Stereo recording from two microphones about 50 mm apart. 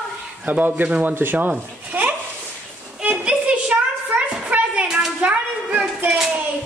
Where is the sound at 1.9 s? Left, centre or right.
Right.